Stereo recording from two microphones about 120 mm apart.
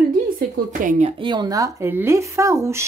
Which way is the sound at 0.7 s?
80° right.